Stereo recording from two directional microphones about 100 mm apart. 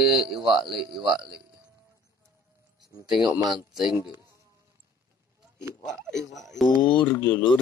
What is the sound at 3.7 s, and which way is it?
Speech, 5° right (ahead or behind).